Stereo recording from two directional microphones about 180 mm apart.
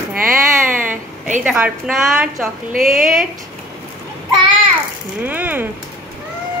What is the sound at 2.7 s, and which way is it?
Speech, 50° right (ahead or behind).